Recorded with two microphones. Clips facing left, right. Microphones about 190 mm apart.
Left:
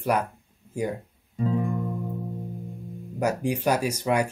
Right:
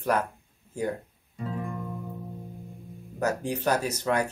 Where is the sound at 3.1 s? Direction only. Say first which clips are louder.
Left 3 dB; 10° left (ahead or behind).